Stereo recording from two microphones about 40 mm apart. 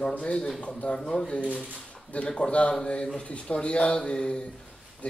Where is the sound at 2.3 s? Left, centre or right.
Left.